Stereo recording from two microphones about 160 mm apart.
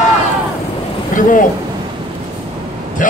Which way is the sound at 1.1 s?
55° left (ahead or behind).